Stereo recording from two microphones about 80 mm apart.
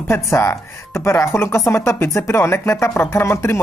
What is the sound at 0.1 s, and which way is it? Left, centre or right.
Speech, left.